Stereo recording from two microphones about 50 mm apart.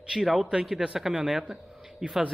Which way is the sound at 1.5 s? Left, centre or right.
Centre.